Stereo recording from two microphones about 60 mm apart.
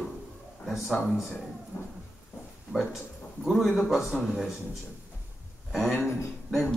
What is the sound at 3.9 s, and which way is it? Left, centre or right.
Speech, centre.